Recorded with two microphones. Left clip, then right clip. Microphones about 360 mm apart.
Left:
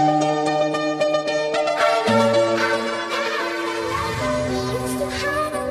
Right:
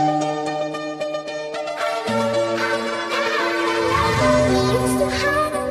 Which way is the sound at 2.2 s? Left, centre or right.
Left.